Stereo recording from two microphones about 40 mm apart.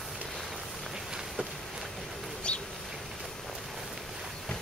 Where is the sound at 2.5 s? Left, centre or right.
Left.